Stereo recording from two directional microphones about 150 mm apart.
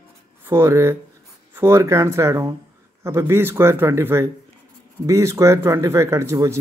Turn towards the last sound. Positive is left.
turn(degrees=-20)  # may be behind; listen again after turning